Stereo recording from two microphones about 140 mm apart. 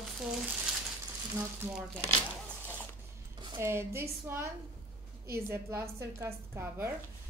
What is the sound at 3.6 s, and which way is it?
A woman's voice, 20° right (ahead or behind).